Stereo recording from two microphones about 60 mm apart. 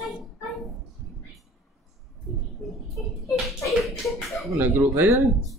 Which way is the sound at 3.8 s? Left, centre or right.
Centre.